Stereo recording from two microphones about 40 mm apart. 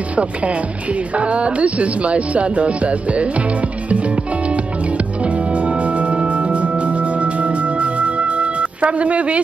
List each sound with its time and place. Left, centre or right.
0.1 s music: right
4.9 s music: right